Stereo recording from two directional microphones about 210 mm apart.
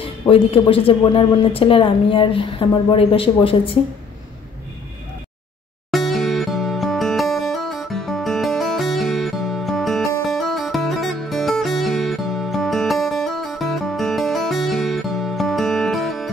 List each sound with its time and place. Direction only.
0.0 s speech: 25° left (ahead or behind)
5.9 s music: centre (ahead or behind)